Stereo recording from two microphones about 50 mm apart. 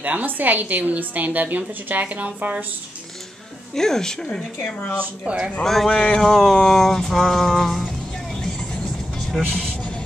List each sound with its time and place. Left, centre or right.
0.0 s a woman's voice: right
3.7 s speech: centre
5.2 s speech: centre
5.6 s mantra: centre
5.9 s speech: centre
6.3 s mantra: centre
9.5 s music: centre